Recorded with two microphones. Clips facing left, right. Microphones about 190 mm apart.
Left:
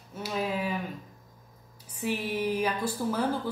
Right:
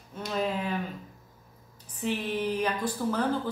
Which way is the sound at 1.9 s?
10° left (ahead or behind).